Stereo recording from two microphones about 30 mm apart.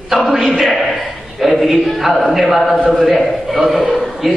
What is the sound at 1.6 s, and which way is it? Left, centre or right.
Speech, centre.